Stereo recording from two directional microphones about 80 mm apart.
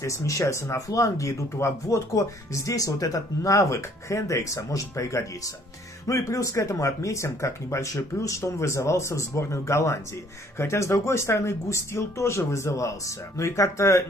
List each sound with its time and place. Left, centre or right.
0.0 s speech: left